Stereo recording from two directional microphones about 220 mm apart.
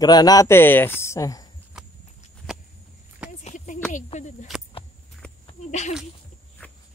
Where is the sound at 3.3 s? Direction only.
35° left (ahead or behind).